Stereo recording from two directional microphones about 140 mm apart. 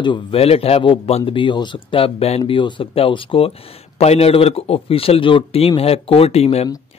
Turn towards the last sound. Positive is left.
turn(degrees=45)  # may be behind; listen again after turning